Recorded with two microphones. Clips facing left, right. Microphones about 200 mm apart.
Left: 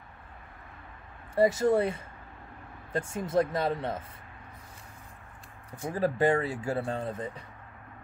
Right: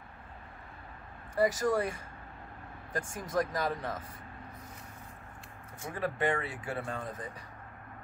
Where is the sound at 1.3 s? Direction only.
25° left (ahead or behind).